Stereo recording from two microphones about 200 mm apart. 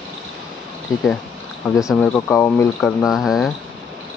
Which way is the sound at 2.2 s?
10° left (ahead or behind).